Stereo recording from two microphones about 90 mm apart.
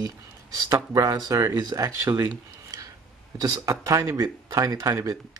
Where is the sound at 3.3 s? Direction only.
45° right (ahead or behind).